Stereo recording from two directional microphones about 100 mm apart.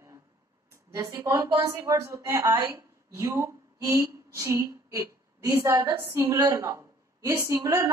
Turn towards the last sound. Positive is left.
turn(degrees=-30)  # may be behind; listen again after turning